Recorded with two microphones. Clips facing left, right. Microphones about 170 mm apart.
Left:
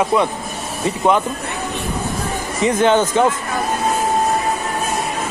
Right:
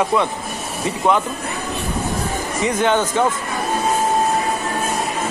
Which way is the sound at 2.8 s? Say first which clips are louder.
Left 3 dB; 20° left (ahead or behind).